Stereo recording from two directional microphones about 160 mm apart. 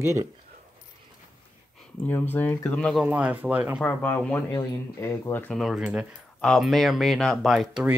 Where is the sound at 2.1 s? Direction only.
10° left (ahead or behind).